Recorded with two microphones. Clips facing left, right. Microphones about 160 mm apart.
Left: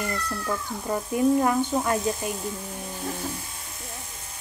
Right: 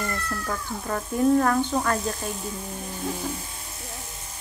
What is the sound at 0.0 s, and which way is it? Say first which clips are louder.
Speech: left 1 dB; 10° left (ahead or behind).